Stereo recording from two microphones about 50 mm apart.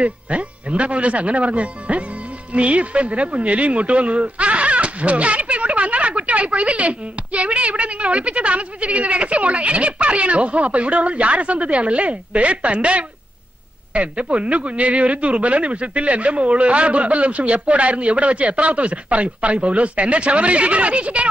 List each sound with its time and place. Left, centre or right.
0.0 s speech: right